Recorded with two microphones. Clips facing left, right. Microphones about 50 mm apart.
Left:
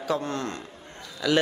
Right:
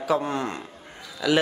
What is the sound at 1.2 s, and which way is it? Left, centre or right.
Speech, centre.